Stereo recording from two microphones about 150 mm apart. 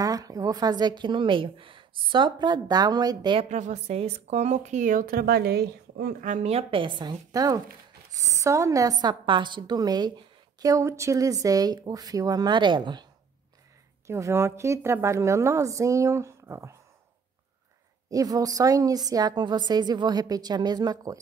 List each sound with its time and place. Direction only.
0.0 s a woman's voice: 25° right (ahead or behind)
3.4 s a woman's voice: 50° right (ahead or behind); by 6.3 s 90° right
6.3 s a woman's voice: 45° right (ahead or behind)
14.0 s a woman's voice: 20° right (ahead or behind)
18.1 s a woman's voice: 25° right (ahead or behind)